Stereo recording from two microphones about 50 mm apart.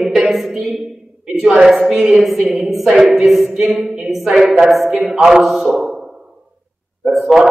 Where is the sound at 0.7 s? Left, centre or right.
Right.